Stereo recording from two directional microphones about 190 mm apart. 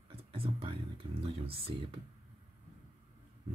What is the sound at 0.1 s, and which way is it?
Whispering, 30° right (ahead or behind).